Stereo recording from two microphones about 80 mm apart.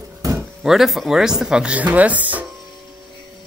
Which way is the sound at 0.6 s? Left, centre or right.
Centre.